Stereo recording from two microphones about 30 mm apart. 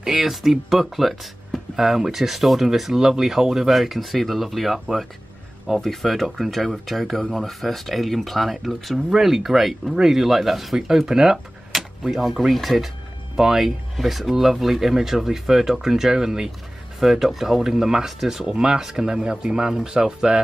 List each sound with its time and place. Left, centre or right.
0.0 s speech: centre
5.8 s speech: centre
11.7 s a sound: centre
12.3 s speech: centre
17.0 s speech: centre; by 18.8 s right
18.8 s speech: centre